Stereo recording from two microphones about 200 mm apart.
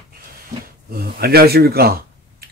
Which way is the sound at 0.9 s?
50° right (ahead or behind).